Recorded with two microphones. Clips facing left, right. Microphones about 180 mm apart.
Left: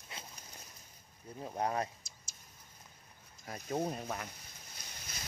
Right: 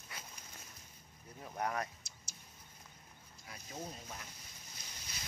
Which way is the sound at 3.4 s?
55° left (ahead or behind).